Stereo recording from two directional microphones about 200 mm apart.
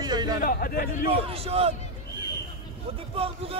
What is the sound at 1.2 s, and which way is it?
Speech, 30° right (ahead or behind).